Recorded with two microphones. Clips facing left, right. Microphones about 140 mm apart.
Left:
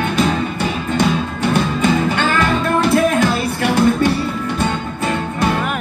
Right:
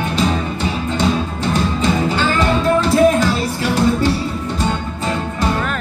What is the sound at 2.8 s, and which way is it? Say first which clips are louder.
Music: even; 55° left (ahead or behind).